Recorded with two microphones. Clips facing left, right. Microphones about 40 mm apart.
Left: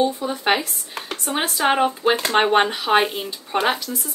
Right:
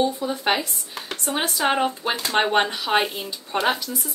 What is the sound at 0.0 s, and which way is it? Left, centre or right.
A woman's voice, centre.